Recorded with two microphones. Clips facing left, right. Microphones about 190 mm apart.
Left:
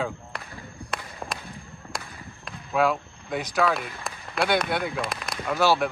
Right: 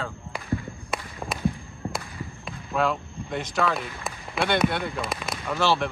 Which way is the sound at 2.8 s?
5° left (ahead or behind).